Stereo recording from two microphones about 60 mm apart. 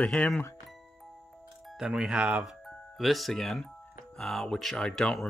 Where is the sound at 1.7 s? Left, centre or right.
Centre.